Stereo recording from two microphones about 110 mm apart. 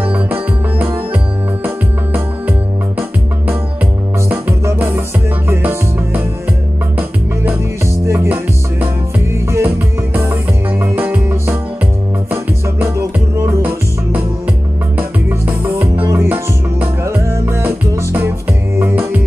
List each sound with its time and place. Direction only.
0.1 s music: 15° right (ahead or behind)
4.3 s music: 20° right (ahead or behind)
9.3 s music: 20° right (ahead or behind)
15.0 s music: 15° right (ahead or behind)